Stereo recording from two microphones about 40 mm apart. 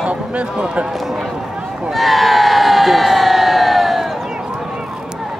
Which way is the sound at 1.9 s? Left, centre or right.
Centre.